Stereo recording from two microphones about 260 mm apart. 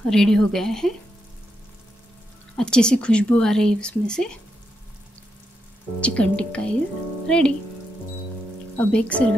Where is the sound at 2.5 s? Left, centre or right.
Centre.